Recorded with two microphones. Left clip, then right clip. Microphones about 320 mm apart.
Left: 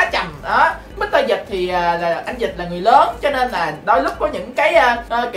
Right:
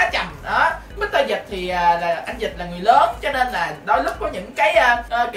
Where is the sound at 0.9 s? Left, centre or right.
Centre.